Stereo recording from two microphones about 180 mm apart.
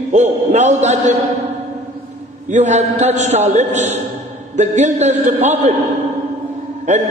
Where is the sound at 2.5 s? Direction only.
40° right (ahead or behind).